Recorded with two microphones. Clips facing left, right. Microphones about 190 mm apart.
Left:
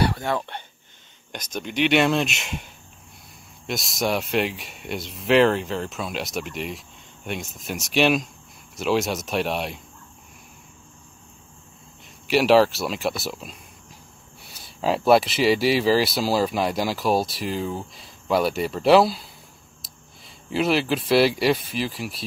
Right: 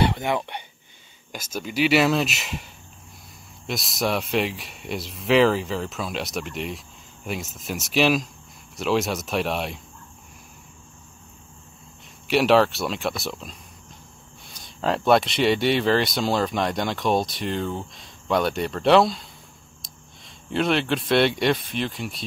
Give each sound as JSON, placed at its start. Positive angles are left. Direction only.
{"t": 0.0, "sound": "speech", "side_deg": -20}
{"t": 1.3, "sound": "speech", "side_deg": -5}
{"t": 12.3, "sound": "speech", "side_deg": 0}